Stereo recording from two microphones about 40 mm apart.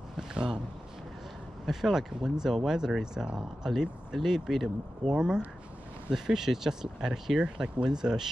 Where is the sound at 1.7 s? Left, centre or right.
Centre.